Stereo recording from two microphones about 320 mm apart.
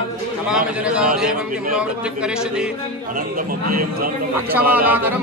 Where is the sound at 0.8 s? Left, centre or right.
Centre.